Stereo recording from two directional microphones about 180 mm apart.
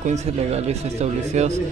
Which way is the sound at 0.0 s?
40° right (ahead or behind).